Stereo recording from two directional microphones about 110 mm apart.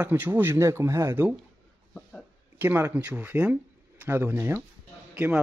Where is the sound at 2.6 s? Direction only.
20° right (ahead or behind).